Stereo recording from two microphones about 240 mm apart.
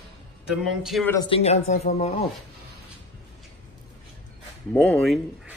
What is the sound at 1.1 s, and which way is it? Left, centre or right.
Speech, left.